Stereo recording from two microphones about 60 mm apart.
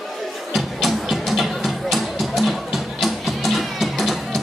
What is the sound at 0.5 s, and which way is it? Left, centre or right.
Music, centre.